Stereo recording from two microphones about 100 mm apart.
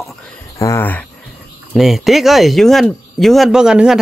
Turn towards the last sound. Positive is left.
turn(degrees=-5)  # may be behind; listen again after turning